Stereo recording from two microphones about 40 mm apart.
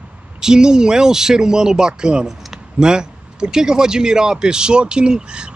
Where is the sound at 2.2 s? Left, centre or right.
Centre.